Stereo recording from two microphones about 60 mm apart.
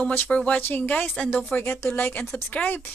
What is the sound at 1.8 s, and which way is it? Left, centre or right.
Speech, left.